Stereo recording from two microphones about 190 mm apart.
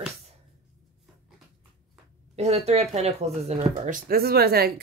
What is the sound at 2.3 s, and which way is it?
Speech, 35° right (ahead or behind).